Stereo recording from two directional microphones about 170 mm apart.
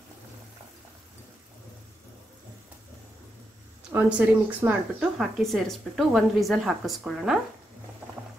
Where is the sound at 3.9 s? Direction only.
10° right (ahead or behind).